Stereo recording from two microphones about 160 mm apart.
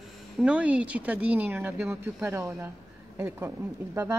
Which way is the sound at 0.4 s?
5° right (ahead or behind).